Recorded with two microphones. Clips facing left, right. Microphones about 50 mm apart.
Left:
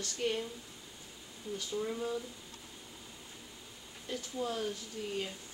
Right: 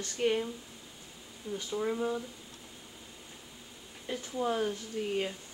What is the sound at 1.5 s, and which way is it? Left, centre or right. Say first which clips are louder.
Speech: right 4 dB; right.